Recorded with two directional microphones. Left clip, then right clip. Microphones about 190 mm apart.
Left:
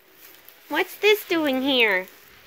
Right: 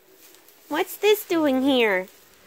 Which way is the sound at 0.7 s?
20° right (ahead or behind).